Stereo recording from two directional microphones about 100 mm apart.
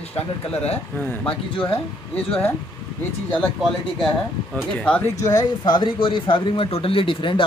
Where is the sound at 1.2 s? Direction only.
65° left (ahead or behind).